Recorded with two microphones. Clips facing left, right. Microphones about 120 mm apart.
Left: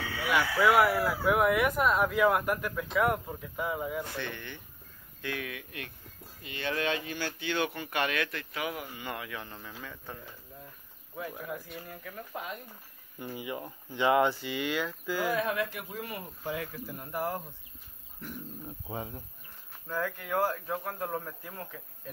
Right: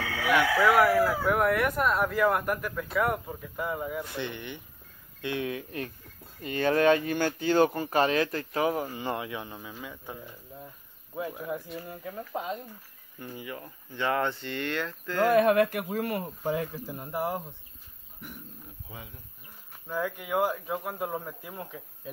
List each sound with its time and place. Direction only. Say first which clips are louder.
0.6 s speech: right 1 dB; centre (ahead or behind)
4.1 s speech: right 3 dB; 20° right (ahead or behind)
6.4 s speech: right 9 dB; 45° right (ahead or behind); by 10.2 s 10° right (ahead or behind)
11.1 s speech: right 5 dB; 20° right (ahead or behind)
13.2 s speech: left 2 dB; 15° left (ahead or behind)
15.2 s speech: right 11 dB; 65° right (ahead or behind)
16.5 s speech: right 5 dB; 30° right (ahead or behind)
18.9 s speech: left 8 dB; 40° left (ahead or behind)
19.9 s speech: right 2 dB; 15° right (ahead or behind)